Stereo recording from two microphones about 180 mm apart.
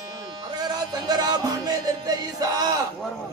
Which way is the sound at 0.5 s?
20° right (ahead or behind).